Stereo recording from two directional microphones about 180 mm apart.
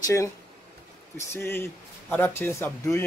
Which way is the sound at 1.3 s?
15° left (ahead or behind).